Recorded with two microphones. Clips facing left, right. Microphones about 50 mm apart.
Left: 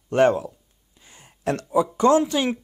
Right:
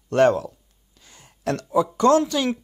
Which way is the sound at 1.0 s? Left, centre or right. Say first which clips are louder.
Left 1 dB; left.